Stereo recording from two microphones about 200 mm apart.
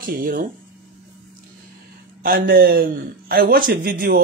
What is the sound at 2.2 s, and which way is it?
Speech, 50° right (ahead or behind).